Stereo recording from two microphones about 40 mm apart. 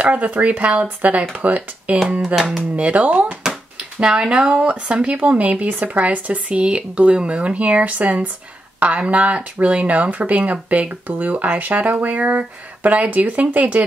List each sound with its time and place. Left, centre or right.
0.0 s speech: right
0.8 s speech: right
2.3 s speech: centre
2.7 s speech: right
3.4 s a sound: right
4.6 s speech: right